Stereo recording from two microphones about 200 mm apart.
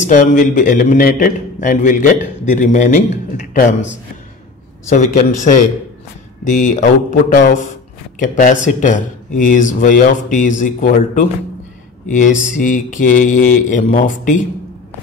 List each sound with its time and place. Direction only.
0.0 s a man's voice: 40° left (ahead or behind)
4.8 s a man's voice: 40° left (ahead or behind)
12.4 s a man's voice: 40° left (ahead or behind)